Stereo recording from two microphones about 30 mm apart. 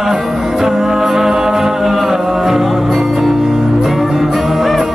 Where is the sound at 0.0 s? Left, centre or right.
Centre.